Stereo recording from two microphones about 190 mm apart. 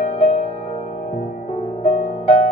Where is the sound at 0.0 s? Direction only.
45° left (ahead or behind).